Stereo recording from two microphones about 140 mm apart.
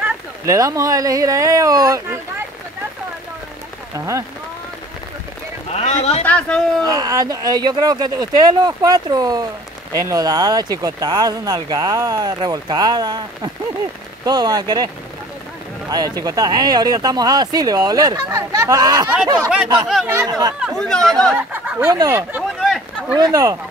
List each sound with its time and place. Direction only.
0.5 s speech: 25° right (ahead or behind)
3.9 s speech: 20° right (ahead or behind)
5.7 s speech: 50° left (ahead or behind)
6.2 s speech: 10° left (ahead or behind)
6.8 s speech: 25° right (ahead or behind)
15.9 s speech: 25° right (ahead or behind)
20.6 s speech: 5° left (ahead or behind)
21.4 s speech: 10° right (ahead or behind)
21.9 s speech: 25° right (ahead or behind)
22.6 s a sound: centre (ahead or behind)
23.1 s speech: 25° right (ahead or behind)